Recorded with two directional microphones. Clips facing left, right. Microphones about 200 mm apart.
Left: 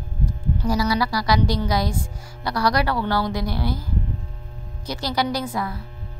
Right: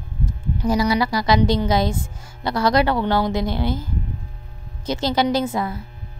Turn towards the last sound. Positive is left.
turn(degrees=-25)  # may be behind; listen again after turning